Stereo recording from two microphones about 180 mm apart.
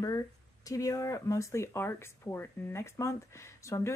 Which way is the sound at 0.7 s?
20° left (ahead or behind).